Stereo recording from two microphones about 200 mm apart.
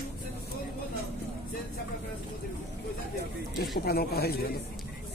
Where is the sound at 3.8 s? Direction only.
50° left (ahead or behind).